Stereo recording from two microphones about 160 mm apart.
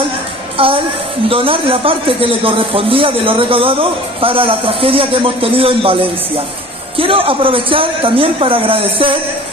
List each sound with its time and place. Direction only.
0.6 s a woman's voice: 35° right (ahead or behind)
7.0 s a man's voice: 35° right (ahead or behind)